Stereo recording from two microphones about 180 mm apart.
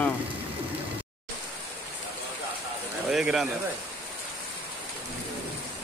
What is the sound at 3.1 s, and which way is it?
Speech, centre (ahead or behind).